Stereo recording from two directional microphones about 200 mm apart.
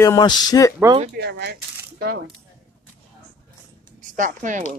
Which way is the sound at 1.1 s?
55° right (ahead or behind).